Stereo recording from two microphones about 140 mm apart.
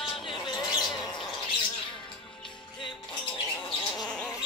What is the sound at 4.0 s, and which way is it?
Bird, 5° left (ahead or behind).